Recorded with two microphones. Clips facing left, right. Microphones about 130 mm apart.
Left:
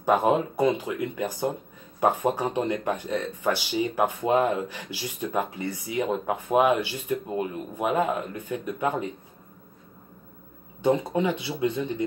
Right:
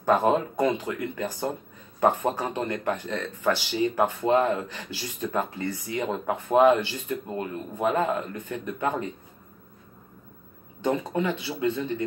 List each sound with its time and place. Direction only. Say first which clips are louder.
0.0 s speech: even; 15° left (ahead or behind)
10.8 s speech: left 3 dB; 15° left (ahead or behind)